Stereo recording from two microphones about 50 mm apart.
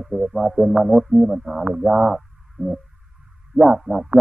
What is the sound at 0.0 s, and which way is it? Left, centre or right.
Speech, centre.